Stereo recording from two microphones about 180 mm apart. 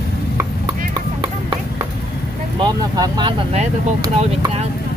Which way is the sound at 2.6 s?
25° right (ahead or behind).